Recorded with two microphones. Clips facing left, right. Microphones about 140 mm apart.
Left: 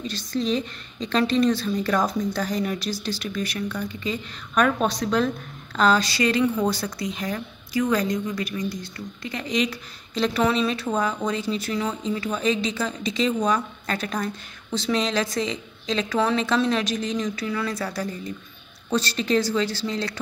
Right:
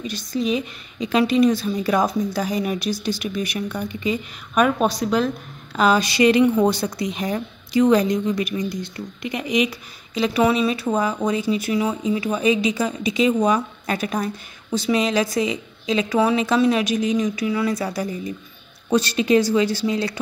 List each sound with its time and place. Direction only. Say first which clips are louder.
0.0 s speech: right 2 dB; 10° right (ahead or behind)